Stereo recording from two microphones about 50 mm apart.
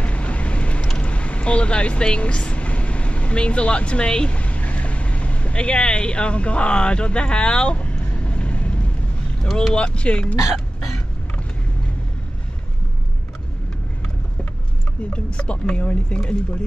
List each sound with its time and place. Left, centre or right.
0.0 s vehicle: left
9.4 s speech: centre
9.8 s speech: left
15.1 s speech: left